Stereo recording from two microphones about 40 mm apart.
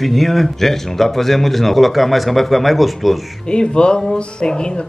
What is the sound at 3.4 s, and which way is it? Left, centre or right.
Speech, left.